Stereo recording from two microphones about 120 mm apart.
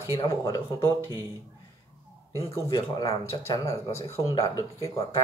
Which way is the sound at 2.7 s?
30° left (ahead or behind).